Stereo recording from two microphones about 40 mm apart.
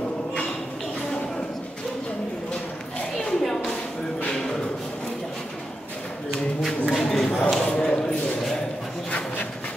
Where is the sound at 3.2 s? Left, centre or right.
Centre.